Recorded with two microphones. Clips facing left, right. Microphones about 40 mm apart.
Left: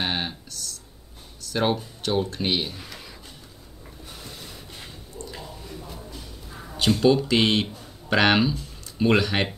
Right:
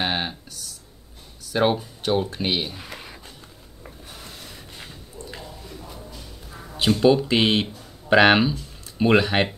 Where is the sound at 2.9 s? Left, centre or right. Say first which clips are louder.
Right 3 dB; right.